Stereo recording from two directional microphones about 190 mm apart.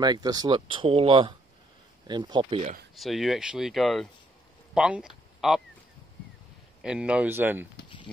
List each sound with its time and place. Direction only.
0.0 s speech: 20° right (ahead or behind)
3.0 s speech: centre (ahead or behind)
6.8 s speech: 5° right (ahead or behind)